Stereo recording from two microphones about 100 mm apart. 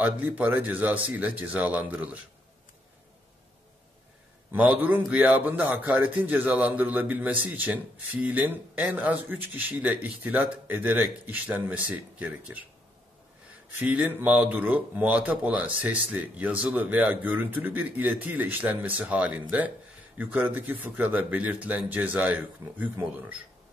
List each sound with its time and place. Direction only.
0.0 s a man's voice: 15° right (ahead or behind)
4.5 s a man's voice: 15° right (ahead or behind)
13.7 s a man's voice: 15° right (ahead or behind)